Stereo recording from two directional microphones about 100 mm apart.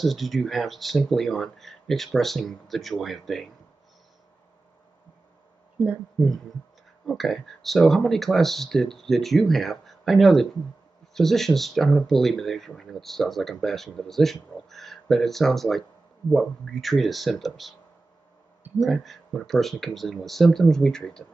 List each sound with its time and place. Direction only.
0.0 s speech: centre (ahead or behind)
5.8 s speech: 15° right (ahead or behind)
6.2 s speech: 5° left (ahead or behind)
18.8 s speech: centre (ahead or behind)